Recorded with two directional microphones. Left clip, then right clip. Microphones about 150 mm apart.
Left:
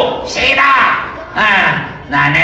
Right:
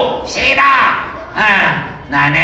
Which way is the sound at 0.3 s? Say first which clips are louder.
Even; 30° left (ahead or behind).